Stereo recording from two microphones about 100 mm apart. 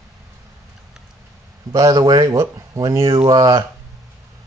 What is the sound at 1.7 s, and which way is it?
Speech, 40° right (ahead or behind).